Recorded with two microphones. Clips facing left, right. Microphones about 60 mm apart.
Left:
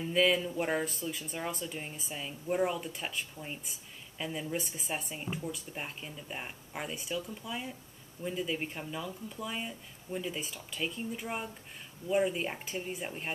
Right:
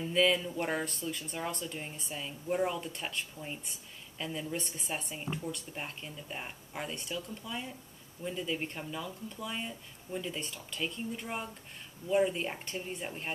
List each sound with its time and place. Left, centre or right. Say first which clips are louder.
0.0 s speech: even; centre